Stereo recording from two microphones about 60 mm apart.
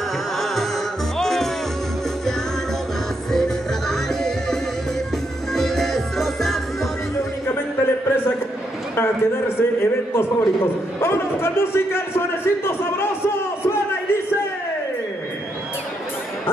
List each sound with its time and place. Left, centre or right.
1.1 s music: centre
3.3 s music: centre
7.4 s a sound: left
10.1 s a man's voice: left